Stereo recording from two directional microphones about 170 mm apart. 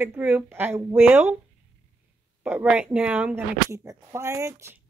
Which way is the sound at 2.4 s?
5° right (ahead or behind).